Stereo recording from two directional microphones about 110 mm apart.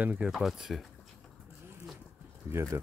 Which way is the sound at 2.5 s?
25° right (ahead or behind).